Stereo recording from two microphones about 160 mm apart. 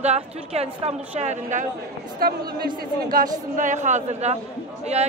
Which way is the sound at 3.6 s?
50° right (ahead or behind).